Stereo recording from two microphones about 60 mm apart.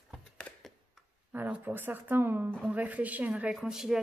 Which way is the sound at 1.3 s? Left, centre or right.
Right.